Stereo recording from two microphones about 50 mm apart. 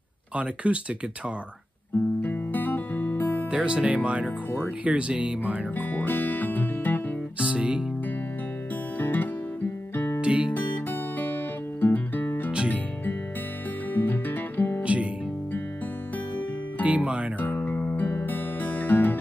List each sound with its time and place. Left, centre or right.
0.7 s speech: right
2.2 s music: left
3.5 s speech: right
5.8 s music: left
7.3 s music: right
9.0 s music: left
10.2 s guitar: right
10.5 s music: left
13.9 s music: left
14.8 s guitar: right
16.8 s music: right
17.7 s music: left